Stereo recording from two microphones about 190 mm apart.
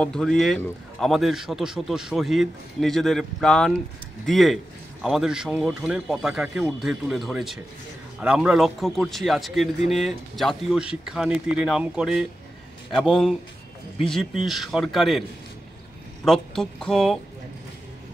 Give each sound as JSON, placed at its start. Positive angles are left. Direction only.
{"t": 0.0, "sound": "speech", "side_deg": 5}
{"t": 16.3, "sound": "speech", "side_deg": 0}